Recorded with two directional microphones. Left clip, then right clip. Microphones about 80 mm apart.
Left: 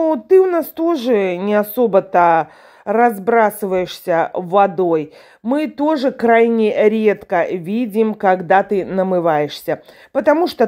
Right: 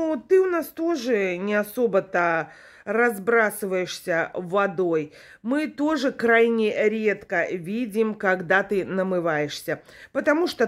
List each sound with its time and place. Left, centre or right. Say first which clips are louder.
0.0 s a woman's voice: left 8 dB; left
2.8 s speech: left 8 dB; left
6.7 s a woman's voice: left 8 dB; left
9.1 s a woman's voice: left 10 dB; left